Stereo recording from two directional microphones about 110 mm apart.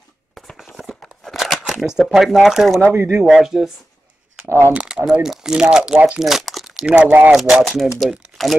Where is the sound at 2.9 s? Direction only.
20° right (ahead or behind).